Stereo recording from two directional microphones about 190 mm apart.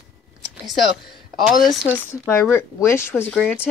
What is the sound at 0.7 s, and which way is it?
Speech, centre (ahead or behind).